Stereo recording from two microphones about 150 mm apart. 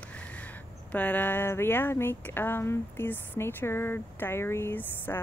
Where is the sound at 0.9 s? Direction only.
10° left (ahead or behind).